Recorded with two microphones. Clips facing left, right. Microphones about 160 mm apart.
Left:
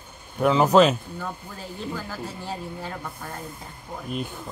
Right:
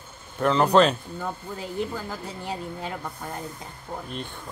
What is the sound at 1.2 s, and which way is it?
Speech, 15° right (ahead or behind).